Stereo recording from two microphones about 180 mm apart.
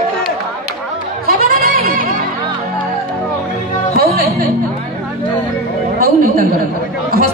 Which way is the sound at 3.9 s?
55° right (ahead or behind).